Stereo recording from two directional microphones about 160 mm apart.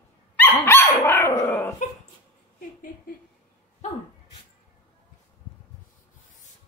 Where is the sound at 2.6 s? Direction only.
60° left (ahead or behind).